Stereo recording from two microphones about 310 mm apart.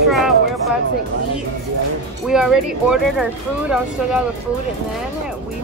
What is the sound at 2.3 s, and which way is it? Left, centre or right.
Speech, centre.